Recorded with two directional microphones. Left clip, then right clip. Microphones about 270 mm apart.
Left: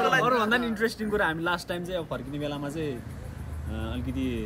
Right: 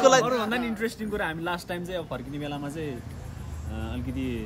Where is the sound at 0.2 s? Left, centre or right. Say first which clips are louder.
Left 2 dB; centre.